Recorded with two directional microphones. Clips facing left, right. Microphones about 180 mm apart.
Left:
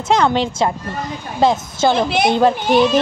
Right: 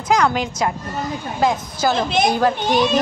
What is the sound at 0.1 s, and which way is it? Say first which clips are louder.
A child's voice: left 2 dB; 30° left (ahead or behind).